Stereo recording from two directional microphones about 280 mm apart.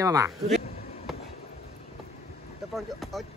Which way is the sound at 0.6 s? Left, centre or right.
Left.